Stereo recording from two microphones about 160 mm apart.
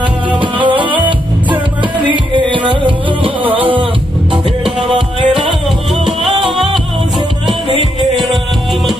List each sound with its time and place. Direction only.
0.3 s music: 30° right (ahead or behind)
3.5 s a sound: 35° right (ahead or behind)
4.7 s music: 30° right (ahead or behind)
8.0 s music: centre (ahead or behind)